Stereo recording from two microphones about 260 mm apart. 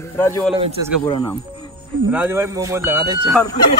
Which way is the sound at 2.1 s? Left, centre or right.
Centre.